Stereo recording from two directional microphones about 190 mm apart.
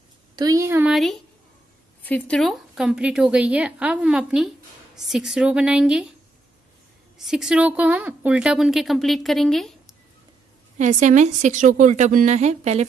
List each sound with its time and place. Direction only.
0.4 s speech: 15° right (ahead or behind)
2.0 s a woman's voice: 5° left (ahead or behind)
7.2 s a woman's voice: 5° right (ahead or behind)
10.8 s a woman's voice: 40° right (ahead or behind)